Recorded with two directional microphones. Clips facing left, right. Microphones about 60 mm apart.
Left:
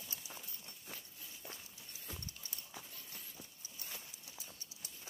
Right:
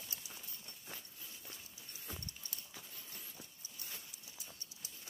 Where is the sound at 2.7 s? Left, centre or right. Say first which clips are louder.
Left 1 dB; centre.